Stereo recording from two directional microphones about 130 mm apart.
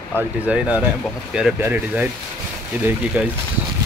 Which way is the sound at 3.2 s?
15° right (ahead or behind).